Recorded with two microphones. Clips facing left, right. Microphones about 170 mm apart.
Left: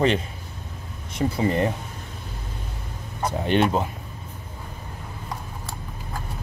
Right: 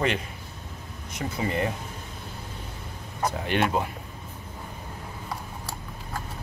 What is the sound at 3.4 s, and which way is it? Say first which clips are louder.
Speech: left 5 dB; 25° left (ahead or behind).